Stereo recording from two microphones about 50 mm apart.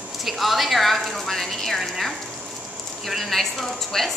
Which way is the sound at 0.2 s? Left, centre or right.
Centre.